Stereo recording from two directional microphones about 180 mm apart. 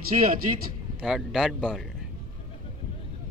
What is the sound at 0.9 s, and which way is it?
Speech, centre (ahead or behind).